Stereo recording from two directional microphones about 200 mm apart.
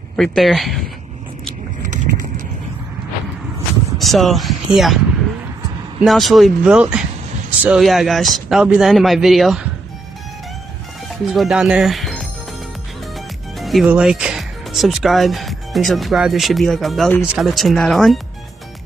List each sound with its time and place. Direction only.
0.1 s speech: 5° left (ahead or behind)
1.8 s clip-clop: 40° right (ahead or behind)
4.0 s speech: centre (ahead or behind)
5.9 s speech: centre (ahead or behind)
11.3 s speech: centre (ahead or behind)
13.6 s speech: centre (ahead or behind)